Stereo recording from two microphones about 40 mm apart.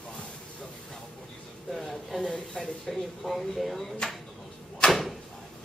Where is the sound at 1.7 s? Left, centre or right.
Centre.